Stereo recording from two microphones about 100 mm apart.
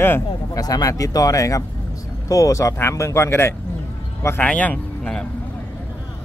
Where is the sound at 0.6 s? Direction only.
40° left (ahead or behind).